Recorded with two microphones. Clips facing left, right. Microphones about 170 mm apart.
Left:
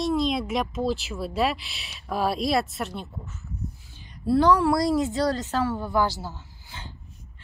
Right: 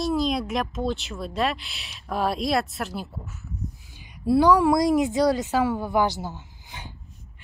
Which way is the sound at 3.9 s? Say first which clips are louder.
Right 2 dB; 15° right (ahead or behind).